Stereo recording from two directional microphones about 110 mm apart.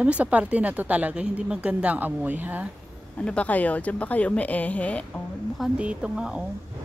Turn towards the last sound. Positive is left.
turn(degrees=-10)  # may be behind; listen again after turning